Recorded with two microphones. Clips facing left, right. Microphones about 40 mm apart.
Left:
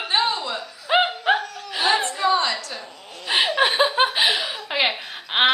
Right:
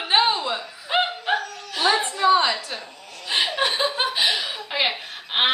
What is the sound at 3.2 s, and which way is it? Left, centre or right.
Chuckle, centre.